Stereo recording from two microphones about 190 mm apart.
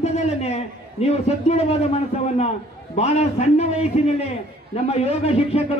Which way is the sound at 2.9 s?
35° left (ahead or behind).